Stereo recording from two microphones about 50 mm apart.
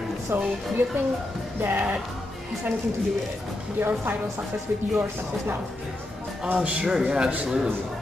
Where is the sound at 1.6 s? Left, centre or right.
Right.